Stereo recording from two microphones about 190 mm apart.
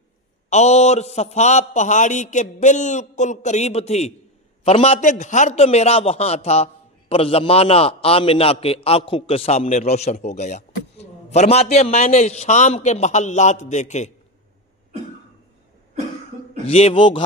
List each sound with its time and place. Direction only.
0.5 s a man's voice: 35° left (ahead or behind)
16.6 s a man's voice: 30° left (ahead or behind)